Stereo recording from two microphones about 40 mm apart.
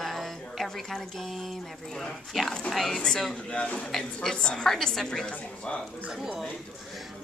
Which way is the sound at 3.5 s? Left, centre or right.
Left.